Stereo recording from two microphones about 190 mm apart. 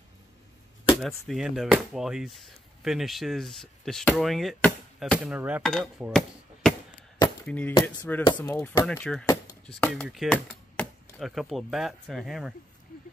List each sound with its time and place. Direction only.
0.8 s speech: centre (ahead or behind)
6.0 s chop: centre (ahead or behind)
7.4 s speech: 5° left (ahead or behind)
8.8 s speech: 5° left (ahead or behind)
9.2 s a sound: 20° left (ahead or behind)
10.0 s chopping: centre (ahead or behind)